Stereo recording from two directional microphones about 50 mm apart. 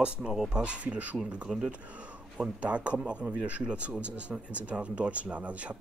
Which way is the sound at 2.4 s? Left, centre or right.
Right.